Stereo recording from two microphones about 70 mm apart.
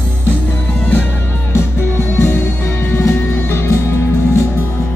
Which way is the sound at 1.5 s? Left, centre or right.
Left.